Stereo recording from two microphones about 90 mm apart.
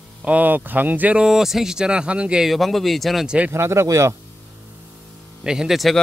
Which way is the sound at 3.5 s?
30° right (ahead or behind).